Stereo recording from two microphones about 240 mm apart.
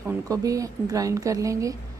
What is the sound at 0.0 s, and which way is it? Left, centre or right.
A woman's voice, centre.